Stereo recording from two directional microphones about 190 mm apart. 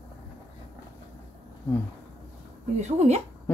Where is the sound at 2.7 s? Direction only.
35° right (ahead or behind).